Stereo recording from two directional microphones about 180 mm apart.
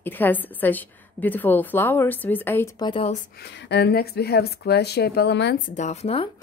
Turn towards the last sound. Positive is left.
turn(degrees=35)  # may be behind; listen again after turning